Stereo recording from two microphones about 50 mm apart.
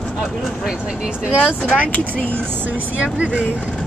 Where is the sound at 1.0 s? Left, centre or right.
Centre.